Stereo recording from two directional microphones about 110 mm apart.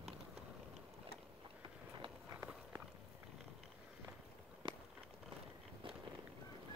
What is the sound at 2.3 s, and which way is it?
Run, 30° right (ahead or behind).